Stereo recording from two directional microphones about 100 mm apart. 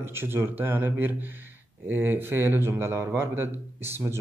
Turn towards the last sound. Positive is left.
turn(degrees=-25)  # may be behind; listen again after turning